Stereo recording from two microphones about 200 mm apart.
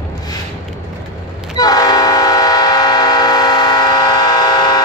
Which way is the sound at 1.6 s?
20° left (ahead or behind).